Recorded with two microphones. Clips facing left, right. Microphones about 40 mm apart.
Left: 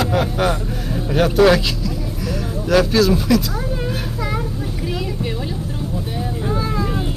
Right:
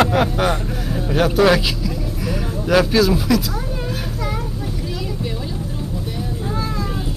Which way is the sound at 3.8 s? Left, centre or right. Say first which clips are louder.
Left 1 dB; centre.